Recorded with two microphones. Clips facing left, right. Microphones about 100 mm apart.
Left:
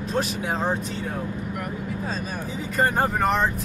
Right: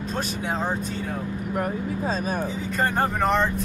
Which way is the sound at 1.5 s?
40° right (ahead or behind).